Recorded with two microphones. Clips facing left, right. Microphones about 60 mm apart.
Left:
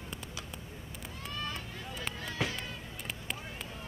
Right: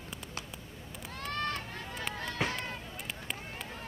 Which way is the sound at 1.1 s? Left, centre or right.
Right.